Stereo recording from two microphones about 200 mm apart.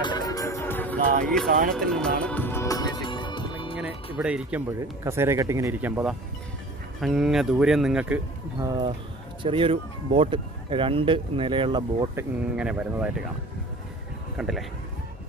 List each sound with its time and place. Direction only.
0.0 s music: 20° left (ahead or behind)
1.2 s speech: 5° left (ahead or behind)
1.5 s speech: 45° right (ahead or behind)
1.8 s speech: 5° left (ahead or behind)
2.2 s music: 10° left (ahead or behind); by 3.7 s 25° left (ahead or behind)
4.2 s speech: 5° right (ahead or behind)
8.5 s speech: 20° right (ahead or behind)
12.5 s speech: 5° right (ahead or behind)
14.3 s a man's voice: 5° right (ahead or behind)